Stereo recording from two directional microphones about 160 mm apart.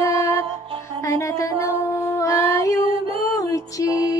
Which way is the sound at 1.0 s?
20° left (ahead or behind).